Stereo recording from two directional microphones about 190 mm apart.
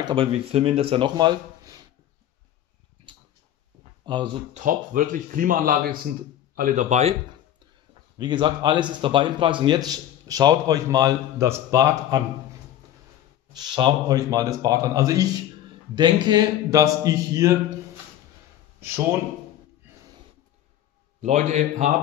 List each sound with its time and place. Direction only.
0.0 s a man's voice: 30° right (ahead or behind)
4.0 s speech: 25° right (ahead or behind)
4.6 s a man's voice: 45° right (ahead or behind)
8.2 s a man's voice: 25° right (ahead or behind)
13.5 s a man's voice: 25° right (ahead or behind)
21.2 s a man's voice: 40° right (ahead or behind)